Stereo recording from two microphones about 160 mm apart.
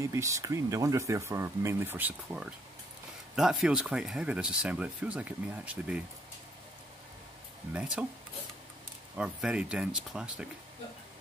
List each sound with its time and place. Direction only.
0.0 s speech: 20° right (ahead or behind)
7.7 s speech: 5° right (ahead or behind)
9.1 s speech: 5° right (ahead or behind)